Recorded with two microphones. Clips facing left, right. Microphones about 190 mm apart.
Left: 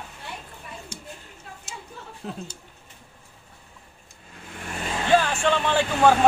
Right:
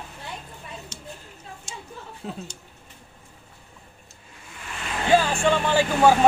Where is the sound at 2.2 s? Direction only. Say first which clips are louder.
Even; 5° left (ahead or behind).